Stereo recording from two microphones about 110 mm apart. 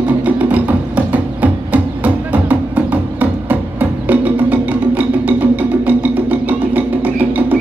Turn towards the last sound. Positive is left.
turn(degrees=-15)  # may be behind; listen again after turning